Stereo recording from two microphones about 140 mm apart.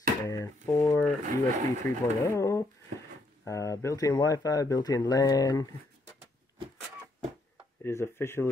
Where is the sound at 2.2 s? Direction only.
20° left (ahead or behind).